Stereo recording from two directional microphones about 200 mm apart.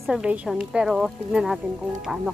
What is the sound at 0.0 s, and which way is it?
A woman's voice, 5° right (ahead or behind).